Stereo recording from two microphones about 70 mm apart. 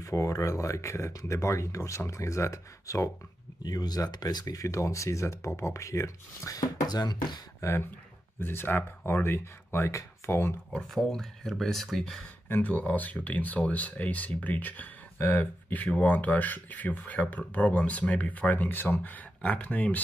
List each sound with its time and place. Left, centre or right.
0.0 s speech: left
3.6 s speech: left
4.6 s speech: left
7.6 s speech: left
10.7 s speech: centre
12.4 s speech: left
15.1 s speech: left
15.7 s speech: left